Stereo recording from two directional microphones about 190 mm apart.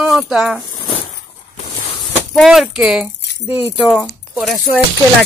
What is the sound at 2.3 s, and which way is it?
Speech, centre (ahead or behind).